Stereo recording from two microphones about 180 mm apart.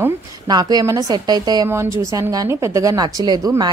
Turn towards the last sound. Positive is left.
turn(degrees=-25)  # may be behind; listen again after turning